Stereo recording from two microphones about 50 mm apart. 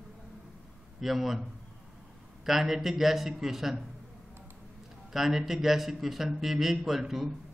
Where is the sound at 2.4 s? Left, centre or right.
Centre.